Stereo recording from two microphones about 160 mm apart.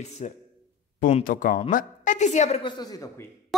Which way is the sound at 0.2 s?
45° left (ahead or behind).